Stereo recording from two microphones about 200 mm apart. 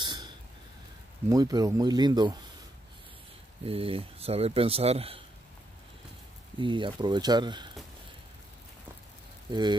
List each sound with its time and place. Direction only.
0.0 s a sound: 25° right (ahead or behind)
1.3 s speech: 20° right (ahead or behind)
3.6 s speech: 30° right (ahead or behind)
6.6 s speech: 25° right (ahead or behind)
9.5 s speech: 20° right (ahead or behind)